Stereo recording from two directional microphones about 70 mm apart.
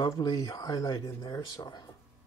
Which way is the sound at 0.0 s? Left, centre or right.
Left.